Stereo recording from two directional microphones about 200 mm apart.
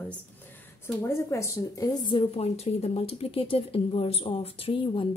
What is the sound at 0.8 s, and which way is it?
Speech, 15° left (ahead or behind).